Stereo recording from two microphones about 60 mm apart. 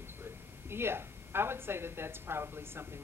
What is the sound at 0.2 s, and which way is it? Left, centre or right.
A woman's voice, right.